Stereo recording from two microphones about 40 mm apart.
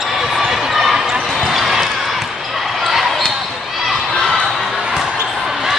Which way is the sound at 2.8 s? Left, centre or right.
Centre.